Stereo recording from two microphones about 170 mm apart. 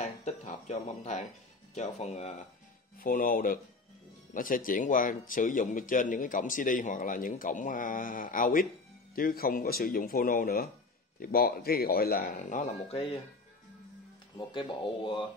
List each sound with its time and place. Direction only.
0.0 s speech: 40° left (ahead or behind)
3.0 s speech: 55° left (ahead or behind); by 13.1 s 35° left (ahead or behind)
14.3 s speech: 30° left (ahead or behind)